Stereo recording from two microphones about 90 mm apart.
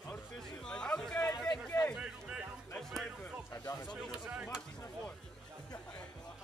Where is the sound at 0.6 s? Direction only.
10° left (ahead or behind).